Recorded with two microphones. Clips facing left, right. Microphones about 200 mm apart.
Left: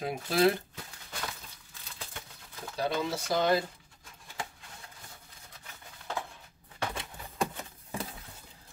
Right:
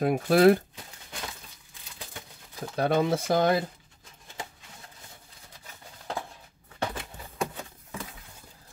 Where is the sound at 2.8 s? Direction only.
55° right (ahead or behind).